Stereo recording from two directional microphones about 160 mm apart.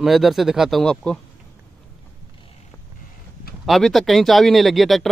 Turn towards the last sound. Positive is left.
turn(degrees=0)  # may be behind; listen again after turning